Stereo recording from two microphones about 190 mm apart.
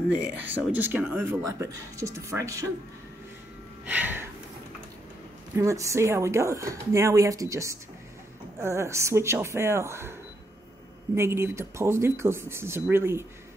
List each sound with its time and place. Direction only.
0.7 s speech: 10° right (ahead or behind)
3.8 s a sound: 10° right (ahead or behind)
5.5 s speech: 15° right (ahead or behind)
11.1 s speech: 15° right (ahead or behind)